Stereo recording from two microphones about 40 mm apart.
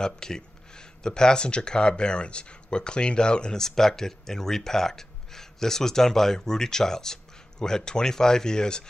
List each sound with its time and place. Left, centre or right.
0.0 s speech: centre
3.6 s speech: centre